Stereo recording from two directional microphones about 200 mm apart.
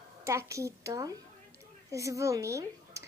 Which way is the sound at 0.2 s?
15° right (ahead or behind).